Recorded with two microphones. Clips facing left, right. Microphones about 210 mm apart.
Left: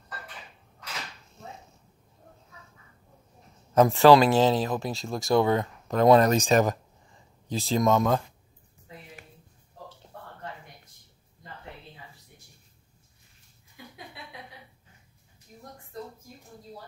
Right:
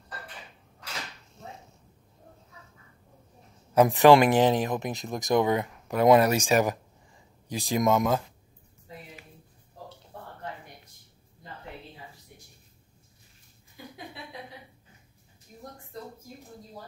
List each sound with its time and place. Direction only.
3.7 s speech: 15° right (ahead or behind)